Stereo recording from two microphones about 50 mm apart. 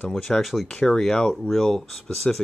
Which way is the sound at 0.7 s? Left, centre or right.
Centre.